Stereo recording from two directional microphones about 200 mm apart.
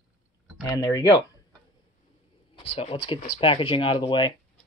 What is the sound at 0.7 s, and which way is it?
Speech, 20° left (ahead or behind).